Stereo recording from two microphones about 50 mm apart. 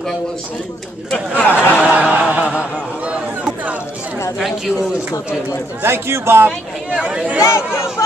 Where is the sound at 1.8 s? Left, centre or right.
Right.